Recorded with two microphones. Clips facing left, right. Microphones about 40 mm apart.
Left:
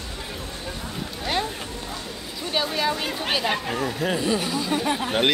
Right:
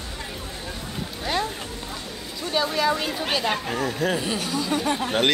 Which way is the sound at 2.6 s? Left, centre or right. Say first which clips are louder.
Right 3 dB; centre.